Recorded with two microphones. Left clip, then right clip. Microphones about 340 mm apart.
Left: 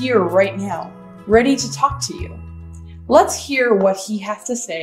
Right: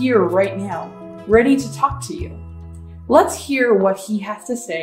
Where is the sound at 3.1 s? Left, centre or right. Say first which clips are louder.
Left 1 dB; centre.